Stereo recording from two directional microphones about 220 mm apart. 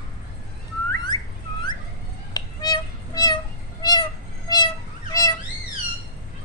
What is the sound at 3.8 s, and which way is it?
Cat, 20° left (ahead or behind).